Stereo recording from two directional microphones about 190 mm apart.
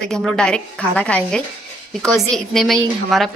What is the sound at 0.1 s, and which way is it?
Speech, 5° left (ahead or behind).